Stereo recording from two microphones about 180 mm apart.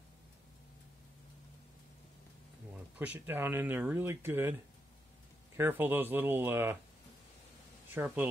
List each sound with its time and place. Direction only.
3.0 s speech: 10° right (ahead or behind)
5.6 s speech: 10° right (ahead or behind)
7.9 s speech: 10° right (ahead or behind)